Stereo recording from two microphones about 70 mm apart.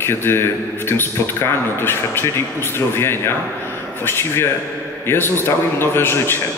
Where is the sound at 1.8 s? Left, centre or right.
Left.